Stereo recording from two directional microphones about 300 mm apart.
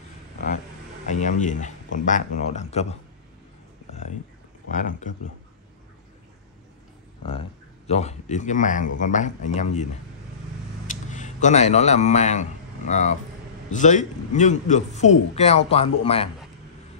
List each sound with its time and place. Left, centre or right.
1.0 s speech: left
4.6 s speech: left
7.2 s speech: centre
10.9 s a sound: left
11.4 s speech: left